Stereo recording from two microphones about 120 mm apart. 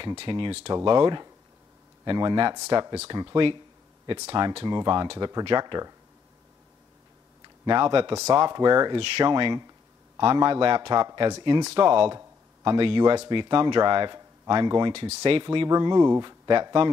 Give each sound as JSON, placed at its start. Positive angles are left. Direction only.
{"t": 0.2, "sound": "speech", "side_deg": -45}
{"t": 7.4, "sound": "speech", "side_deg": -40}
{"t": 8.1, "sound": "speech", "side_deg": -25}
{"t": 11.7, "sound": "speech", "side_deg": -50}
{"t": 12.1, "sound": "speech", "side_deg": -35}